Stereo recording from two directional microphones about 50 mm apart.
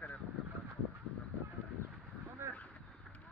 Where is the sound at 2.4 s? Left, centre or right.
Right.